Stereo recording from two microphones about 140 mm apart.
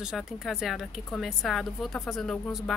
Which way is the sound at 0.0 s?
5° right (ahead or behind).